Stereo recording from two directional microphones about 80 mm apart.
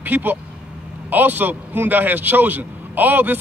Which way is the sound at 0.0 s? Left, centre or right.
Right.